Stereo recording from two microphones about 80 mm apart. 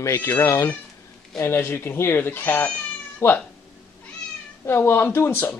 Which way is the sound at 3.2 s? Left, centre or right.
Left.